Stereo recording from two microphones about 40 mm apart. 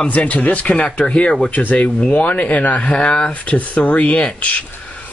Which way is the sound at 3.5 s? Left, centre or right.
Left.